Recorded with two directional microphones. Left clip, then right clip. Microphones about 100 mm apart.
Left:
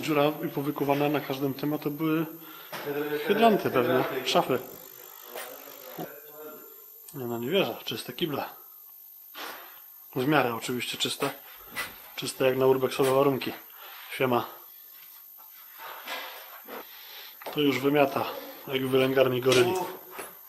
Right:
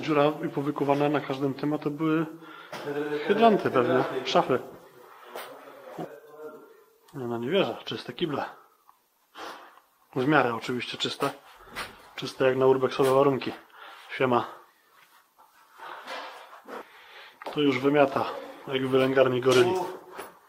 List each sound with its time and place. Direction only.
0.0 s speech: 20° left (ahead or behind)
7.2 s speech: 20° left (ahead or behind)
10.1 s speech: 20° left (ahead or behind)
17.4 s speech: 20° left (ahead or behind)
19.8 s a sound: 10° left (ahead or behind)